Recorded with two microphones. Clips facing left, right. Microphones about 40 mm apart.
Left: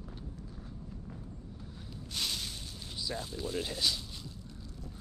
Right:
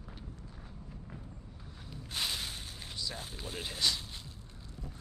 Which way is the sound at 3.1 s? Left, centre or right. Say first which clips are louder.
Left 6 dB; right.